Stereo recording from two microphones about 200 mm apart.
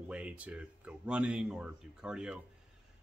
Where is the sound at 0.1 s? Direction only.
5° right (ahead or behind).